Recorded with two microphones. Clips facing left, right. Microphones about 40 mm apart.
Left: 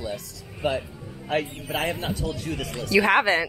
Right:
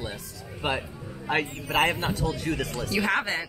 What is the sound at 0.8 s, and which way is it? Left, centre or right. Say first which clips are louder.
Music: right 1 dB; centre.